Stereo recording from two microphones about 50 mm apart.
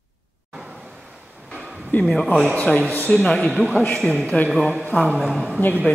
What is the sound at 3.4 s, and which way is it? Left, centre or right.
Speech, centre.